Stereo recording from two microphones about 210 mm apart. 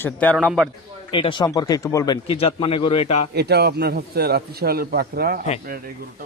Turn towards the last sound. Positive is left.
turn(degrees=-45)  # may be behind; listen again after turning